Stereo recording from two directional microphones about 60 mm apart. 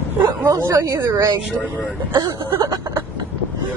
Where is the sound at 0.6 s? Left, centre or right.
Right.